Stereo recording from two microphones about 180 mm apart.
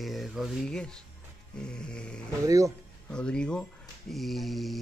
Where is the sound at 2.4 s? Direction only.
20° right (ahead or behind).